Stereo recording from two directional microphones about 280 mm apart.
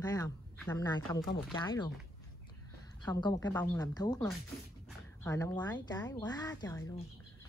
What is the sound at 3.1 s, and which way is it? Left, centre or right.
Speech, centre.